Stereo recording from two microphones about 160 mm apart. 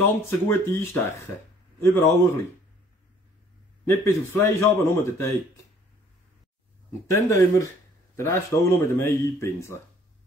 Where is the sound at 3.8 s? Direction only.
15° left (ahead or behind).